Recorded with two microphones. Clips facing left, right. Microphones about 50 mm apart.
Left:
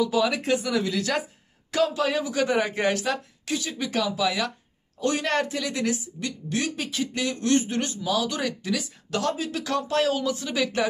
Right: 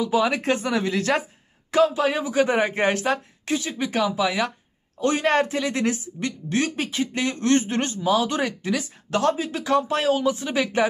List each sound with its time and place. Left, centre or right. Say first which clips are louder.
0.0 s a woman's voice: right 2 dB; right